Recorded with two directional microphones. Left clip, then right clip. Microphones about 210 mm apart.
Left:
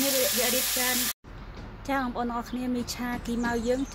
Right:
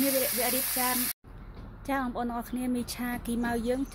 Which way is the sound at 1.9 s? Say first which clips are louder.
Left 2 dB; 30° right (ahead or behind).